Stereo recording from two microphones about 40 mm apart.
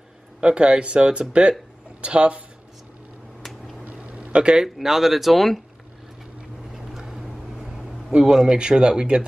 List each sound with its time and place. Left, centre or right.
0.4 s speech: right
3.4 s a sound: centre
3.8 s a sound: right
4.6 s speech: centre
7.0 s vehicle: centre
8.2 s speech: centre